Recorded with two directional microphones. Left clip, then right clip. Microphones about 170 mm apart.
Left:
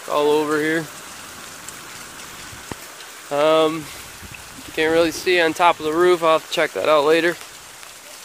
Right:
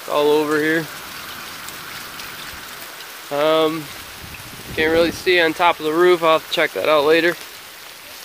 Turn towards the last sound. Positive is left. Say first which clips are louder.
# right 1 dB
turn(degrees=10)  # may be behind; listen again after turning